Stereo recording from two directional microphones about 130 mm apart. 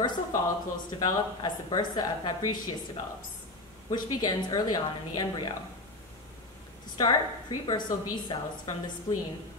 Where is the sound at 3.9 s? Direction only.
30° left (ahead or behind).